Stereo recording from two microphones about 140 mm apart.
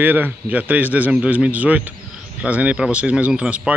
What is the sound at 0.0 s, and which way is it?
A man's voice, 15° right (ahead or behind).